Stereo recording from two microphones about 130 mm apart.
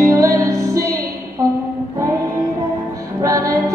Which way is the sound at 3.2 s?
25° right (ahead or behind).